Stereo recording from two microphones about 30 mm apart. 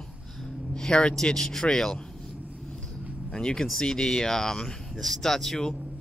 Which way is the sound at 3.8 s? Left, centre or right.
Centre.